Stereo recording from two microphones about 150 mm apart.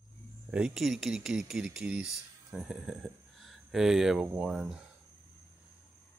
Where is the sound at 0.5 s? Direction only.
5° right (ahead or behind).